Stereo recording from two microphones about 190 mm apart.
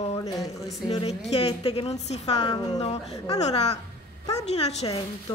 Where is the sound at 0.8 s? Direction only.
25° left (ahead or behind).